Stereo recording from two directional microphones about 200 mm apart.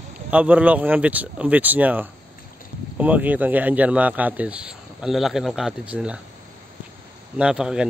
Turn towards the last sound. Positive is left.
turn(degrees=-5)  # may be behind; listen again after turning